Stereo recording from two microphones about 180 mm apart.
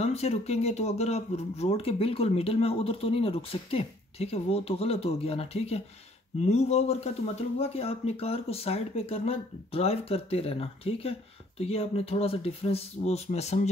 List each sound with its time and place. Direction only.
0.0 s speech: 35° left (ahead or behind)